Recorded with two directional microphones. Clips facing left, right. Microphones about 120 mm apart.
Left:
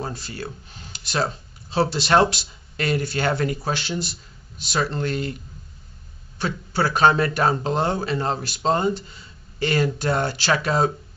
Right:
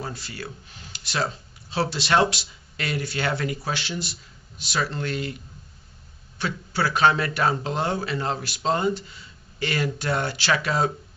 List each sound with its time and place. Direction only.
0.0 s speech: 40° left (ahead or behind)
6.3 s speech: 40° left (ahead or behind)